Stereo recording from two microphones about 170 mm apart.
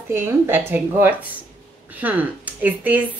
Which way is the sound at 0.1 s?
15° right (ahead or behind).